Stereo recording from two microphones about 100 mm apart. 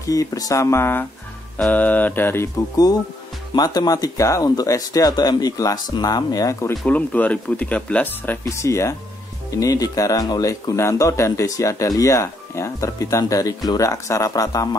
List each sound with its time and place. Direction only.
0.1 s speech: 35° left (ahead or behind)
3.5 s speech: 40° left (ahead or behind)
6.9 s speech: 15° left (ahead or behind)
8.5 s speech: 30° left (ahead or behind)